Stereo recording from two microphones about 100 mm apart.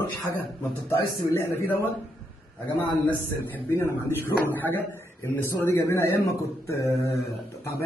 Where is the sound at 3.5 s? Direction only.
20° left (ahead or behind).